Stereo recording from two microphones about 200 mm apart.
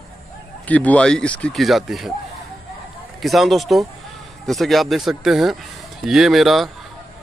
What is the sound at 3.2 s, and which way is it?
Speech, centre (ahead or behind).